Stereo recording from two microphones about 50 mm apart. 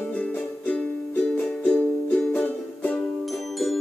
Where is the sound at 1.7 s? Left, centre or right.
Left.